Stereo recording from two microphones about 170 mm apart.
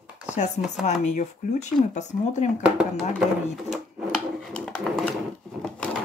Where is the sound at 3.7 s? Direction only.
Centre (ahead or behind).